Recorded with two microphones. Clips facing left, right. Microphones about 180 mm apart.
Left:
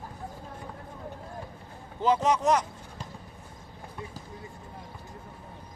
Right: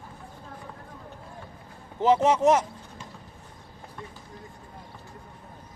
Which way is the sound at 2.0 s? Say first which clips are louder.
Right 4 dB; 25° right (ahead or behind).